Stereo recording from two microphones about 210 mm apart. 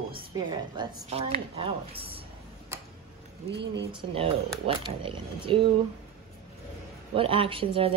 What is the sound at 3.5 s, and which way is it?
Speech, 55° right (ahead or behind).